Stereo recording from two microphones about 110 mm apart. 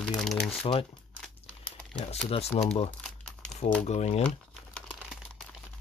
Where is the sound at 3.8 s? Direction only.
85° left.